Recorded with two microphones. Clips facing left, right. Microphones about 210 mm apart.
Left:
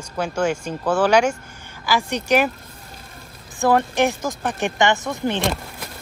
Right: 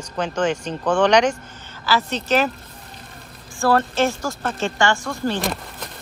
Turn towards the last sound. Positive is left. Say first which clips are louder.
# left 1 dB
turn(degrees=20)  # may be behind; listen again after turning